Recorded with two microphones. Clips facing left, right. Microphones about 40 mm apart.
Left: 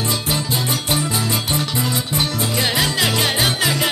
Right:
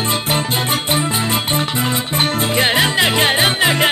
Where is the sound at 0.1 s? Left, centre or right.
Right.